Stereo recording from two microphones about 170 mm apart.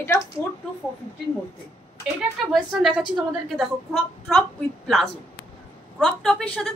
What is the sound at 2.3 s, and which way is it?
Speech, centre (ahead or behind).